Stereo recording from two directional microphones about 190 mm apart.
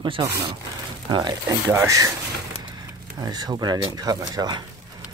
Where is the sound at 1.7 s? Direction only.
15° right (ahead or behind).